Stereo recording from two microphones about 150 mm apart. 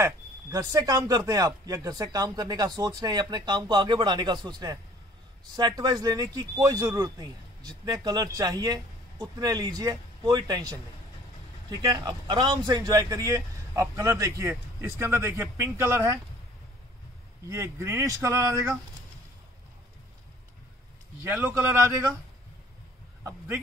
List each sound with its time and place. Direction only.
0.0 s speech: 25° right (ahead or behind)
11.8 s speech: 25° right (ahead or behind)
17.5 s speech: 15° right (ahead or behind)
21.3 s a man's voice: 15° right (ahead or behind)